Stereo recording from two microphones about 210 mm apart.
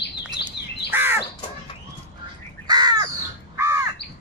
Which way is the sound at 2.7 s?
20° right (ahead or behind).